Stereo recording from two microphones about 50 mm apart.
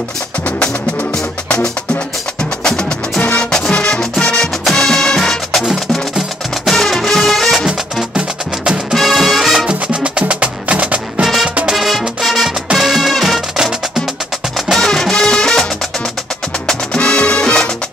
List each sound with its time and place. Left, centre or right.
2.6 s music: centre
5.6 s music: centre
6.7 s music: centre
8.9 s music: centre
9.7 s music: right
11.2 s music: centre
13.6 s music: centre
14.7 s music: centre
16.6 s salsa music: centre